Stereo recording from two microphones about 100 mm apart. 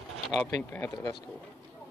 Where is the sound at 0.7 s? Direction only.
20° left (ahead or behind).